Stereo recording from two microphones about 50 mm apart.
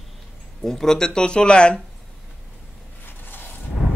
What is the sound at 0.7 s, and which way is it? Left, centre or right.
Speech, centre.